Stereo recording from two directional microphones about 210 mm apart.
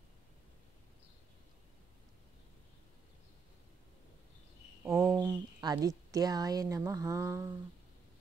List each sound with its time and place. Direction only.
4.8 s a woman's voice: 15° right (ahead or behind)